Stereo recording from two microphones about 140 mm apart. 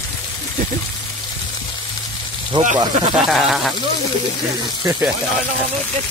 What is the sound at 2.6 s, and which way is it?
Speech, 60° right (ahead or behind).